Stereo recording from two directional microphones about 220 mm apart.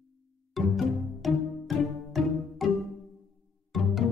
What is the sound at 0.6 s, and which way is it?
Music, centre (ahead or behind).